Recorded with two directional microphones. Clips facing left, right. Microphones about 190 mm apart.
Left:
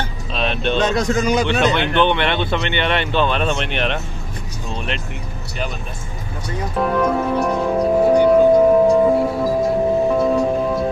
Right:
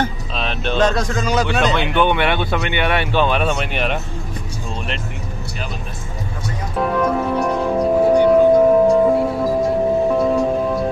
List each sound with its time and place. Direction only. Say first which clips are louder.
0.3 s music: left 2 dB; centre (ahead or behind)
0.9 s a man's voice: left 2 dB; 20° left (ahead or behind)
1.5 s speech: left 1 dB; centre (ahead or behind)
6.8 s speech: even; centre (ahead or behind)
8.7 s music: even; centre (ahead or behind)